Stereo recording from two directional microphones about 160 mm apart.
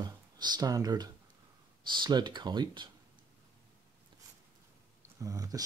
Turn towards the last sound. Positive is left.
turn(degrees=-20)  # may be behind; listen again after turning